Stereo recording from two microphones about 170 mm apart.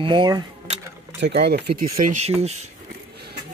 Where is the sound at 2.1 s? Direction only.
40° right (ahead or behind).